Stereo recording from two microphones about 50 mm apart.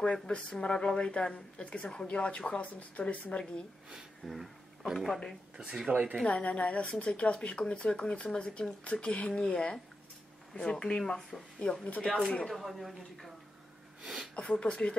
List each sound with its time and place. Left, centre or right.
0.0 s speech: centre
4.3 s speech: centre
5.6 s speech: centre
5.9 s speech: right
6.2 s speech: left
12.4 s speech: centre
14.6 s speech: centre